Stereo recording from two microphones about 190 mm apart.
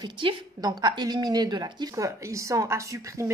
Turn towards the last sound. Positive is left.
turn(degrees=-15)  # may be behind; listen again after turning